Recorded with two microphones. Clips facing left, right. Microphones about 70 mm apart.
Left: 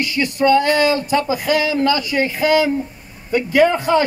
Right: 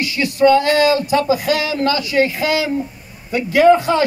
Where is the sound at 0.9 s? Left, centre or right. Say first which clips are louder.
Right 2 dB; left.